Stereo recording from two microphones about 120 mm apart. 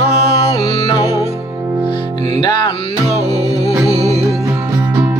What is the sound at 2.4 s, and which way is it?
Music, 40° left (ahead or behind).